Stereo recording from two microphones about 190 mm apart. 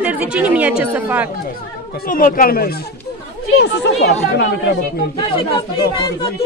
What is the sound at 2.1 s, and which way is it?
Speech, 45° left (ahead or behind).